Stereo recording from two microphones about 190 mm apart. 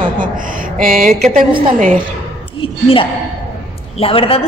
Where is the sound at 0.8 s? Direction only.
45° right (ahead or behind).